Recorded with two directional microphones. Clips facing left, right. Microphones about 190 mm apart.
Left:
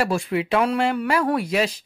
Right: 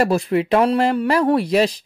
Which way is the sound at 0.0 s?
40° right (ahead or behind).